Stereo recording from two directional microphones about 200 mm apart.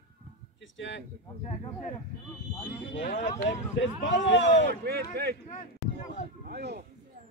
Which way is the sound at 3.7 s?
60° left (ahead or behind).